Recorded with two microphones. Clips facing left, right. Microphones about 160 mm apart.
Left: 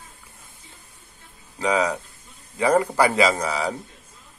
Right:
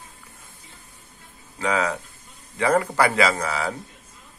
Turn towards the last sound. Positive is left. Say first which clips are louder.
# left 1 dB
turn(degrees=15)  # may be behind; listen again after turning